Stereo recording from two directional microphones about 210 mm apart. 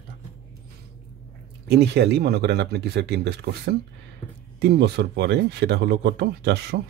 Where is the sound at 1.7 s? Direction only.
50° right (ahead or behind).